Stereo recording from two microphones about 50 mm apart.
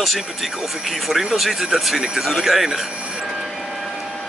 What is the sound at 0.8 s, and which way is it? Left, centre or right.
Speech, centre.